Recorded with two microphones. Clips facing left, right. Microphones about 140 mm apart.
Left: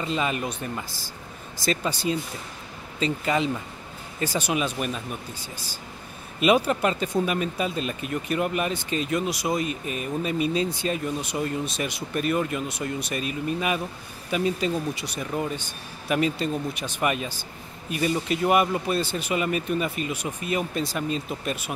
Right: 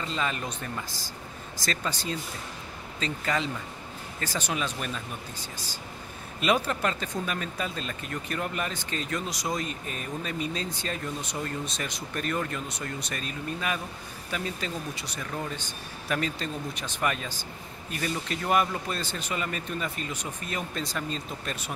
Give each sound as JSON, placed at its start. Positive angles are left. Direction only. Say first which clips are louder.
{"t": 0.0, "sound": "speech", "louder": "left 4 dB", "side_deg": 15}
{"t": 1.7, "sound": "speech", "louder": "left 6 dB", "side_deg": 15}
{"t": 6.4, "sound": "speech", "louder": "left 5 dB", "side_deg": 15}